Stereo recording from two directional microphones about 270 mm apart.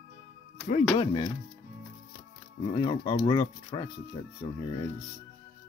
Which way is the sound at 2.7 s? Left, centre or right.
Centre.